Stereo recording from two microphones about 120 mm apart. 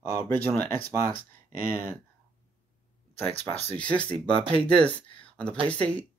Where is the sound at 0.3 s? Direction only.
15° left (ahead or behind).